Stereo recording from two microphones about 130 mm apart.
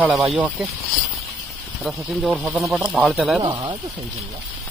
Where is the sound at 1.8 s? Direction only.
Centre (ahead or behind).